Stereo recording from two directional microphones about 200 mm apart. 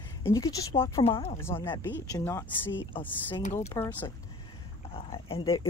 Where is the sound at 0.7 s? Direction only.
30° left (ahead or behind).